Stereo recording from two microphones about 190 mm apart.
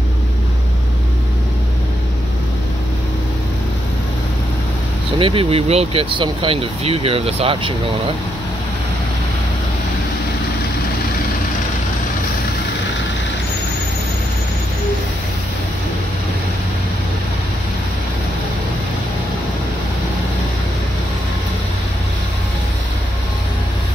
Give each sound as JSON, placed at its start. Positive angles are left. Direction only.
{"t": 5.2, "sound": "speech", "side_deg": -30}